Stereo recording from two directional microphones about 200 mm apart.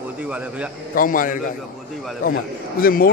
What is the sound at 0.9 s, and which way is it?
Speech, 45° left (ahead or behind).